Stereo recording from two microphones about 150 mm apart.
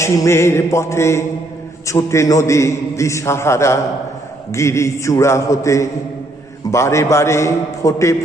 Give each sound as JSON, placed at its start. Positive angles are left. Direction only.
{"t": 0.0, "sound": "a man's voice", "side_deg": 20}